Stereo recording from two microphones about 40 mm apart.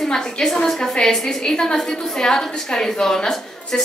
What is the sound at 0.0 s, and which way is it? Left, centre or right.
A woman's voice, centre.